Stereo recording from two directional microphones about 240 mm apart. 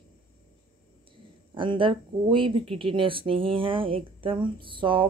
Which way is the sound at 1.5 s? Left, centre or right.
Right.